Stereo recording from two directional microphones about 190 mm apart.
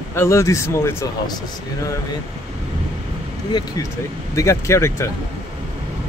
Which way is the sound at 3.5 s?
20° left (ahead or behind).